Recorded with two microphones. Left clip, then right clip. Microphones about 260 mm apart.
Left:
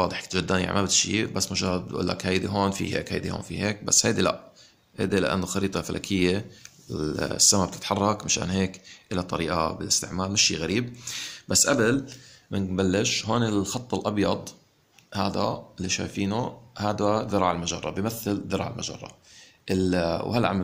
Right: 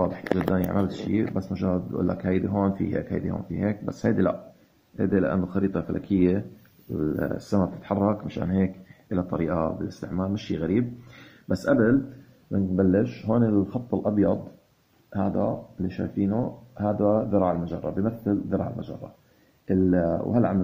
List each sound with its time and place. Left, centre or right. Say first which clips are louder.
0.0 s speech: right 1 dB; left